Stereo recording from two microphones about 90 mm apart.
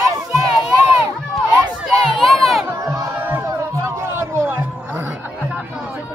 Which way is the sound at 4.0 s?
25° right (ahead or behind).